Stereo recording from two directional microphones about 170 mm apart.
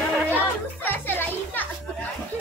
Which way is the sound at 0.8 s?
10° left (ahead or behind).